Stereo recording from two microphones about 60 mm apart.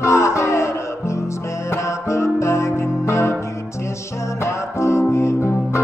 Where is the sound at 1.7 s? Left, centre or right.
Left.